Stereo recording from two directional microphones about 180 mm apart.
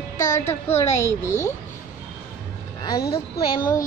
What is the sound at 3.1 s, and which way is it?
Speech, 25° left (ahead or behind).